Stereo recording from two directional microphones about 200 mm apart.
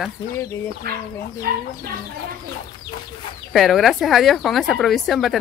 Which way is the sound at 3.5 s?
Centre (ahead or behind).